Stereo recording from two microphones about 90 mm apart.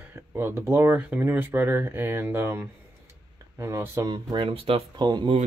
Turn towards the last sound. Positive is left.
turn(degrees=-55)  # may be behind; listen again after turning